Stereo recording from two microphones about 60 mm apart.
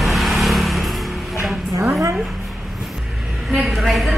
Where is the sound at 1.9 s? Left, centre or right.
Right.